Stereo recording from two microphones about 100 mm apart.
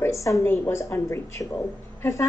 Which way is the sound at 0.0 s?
30° left (ahead or behind).